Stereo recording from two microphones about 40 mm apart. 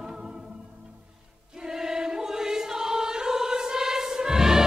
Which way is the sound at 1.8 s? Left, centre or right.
Centre.